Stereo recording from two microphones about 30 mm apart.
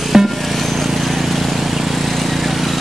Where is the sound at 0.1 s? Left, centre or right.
Centre.